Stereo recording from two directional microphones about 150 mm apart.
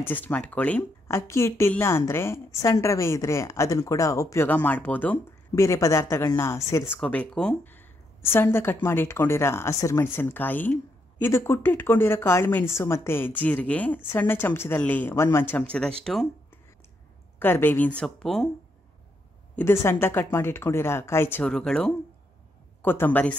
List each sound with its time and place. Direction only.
0.0 s a woman's voice: 10° left (ahead or behind)
7.0 s a woman's voice: 5° left (ahead or behind)
17.4 s a woman's voice: 15° left (ahead or behind)
19.5 s a woman's voice: 15° left (ahead or behind)